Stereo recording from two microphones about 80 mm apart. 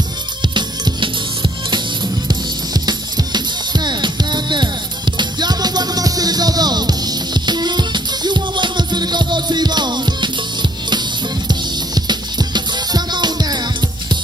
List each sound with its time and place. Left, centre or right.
0.4 s music: right
2.2 s music: right